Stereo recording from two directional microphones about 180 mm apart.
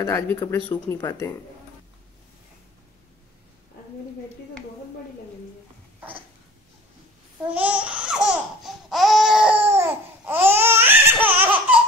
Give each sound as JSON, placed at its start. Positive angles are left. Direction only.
{"t": 0.0, "sound": "speech", "side_deg": 15}
{"t": 7.5, "sound": "laughter", "side_deg": -5}